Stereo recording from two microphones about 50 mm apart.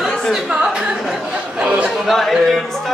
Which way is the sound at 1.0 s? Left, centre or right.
Centre.